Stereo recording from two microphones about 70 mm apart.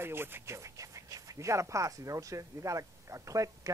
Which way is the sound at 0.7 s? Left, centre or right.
Right.